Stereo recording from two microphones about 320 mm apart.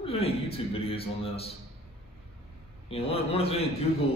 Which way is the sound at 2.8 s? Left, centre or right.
Centre.